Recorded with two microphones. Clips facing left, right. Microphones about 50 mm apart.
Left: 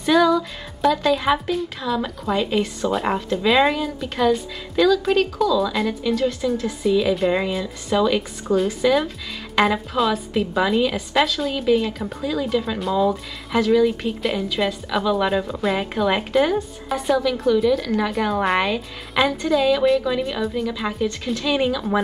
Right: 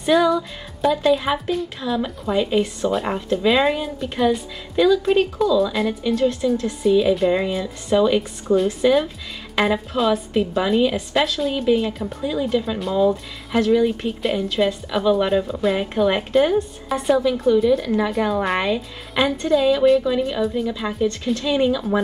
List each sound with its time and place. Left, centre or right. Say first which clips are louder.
0.0 s a woman's voice: even; centre
5.6 s speech: right 1 dB; centre
8.2 s speech: right 2 dB; centre
12.2 s speech: right 1 dB; centre
12.4 s speech: even; centre
17.6 s speech: right 1 dB; centre
18.1 s speech: even; centre
21.4 s speech: right 1 dB; centre